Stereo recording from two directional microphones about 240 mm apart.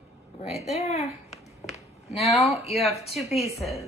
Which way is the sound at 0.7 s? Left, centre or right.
Left.